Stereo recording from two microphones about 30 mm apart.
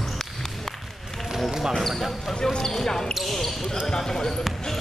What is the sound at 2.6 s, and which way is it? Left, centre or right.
Basketball bounce, centre.